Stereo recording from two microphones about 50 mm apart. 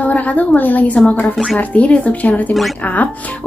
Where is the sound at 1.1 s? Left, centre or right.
Left.